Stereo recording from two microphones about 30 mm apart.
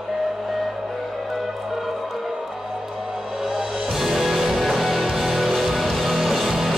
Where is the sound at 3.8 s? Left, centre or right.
Centre.